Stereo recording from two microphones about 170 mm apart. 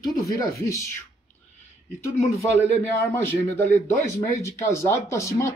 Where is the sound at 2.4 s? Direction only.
15° left (ahead or behind).